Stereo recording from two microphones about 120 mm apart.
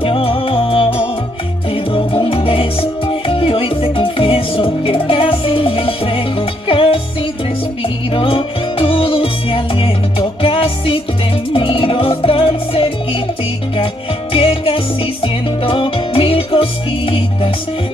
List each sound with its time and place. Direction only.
0.0 s music: 50° left (ahead or behind)
8.1 s music: 45° left (ahead or behind)
14.3 s music: 50° left (ahead or behind)